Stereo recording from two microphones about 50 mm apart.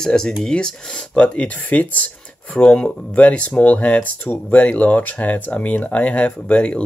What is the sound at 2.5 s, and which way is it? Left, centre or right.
Speech, centre.